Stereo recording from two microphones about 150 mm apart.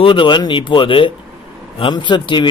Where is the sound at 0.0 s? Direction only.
35° left (ahead or behind).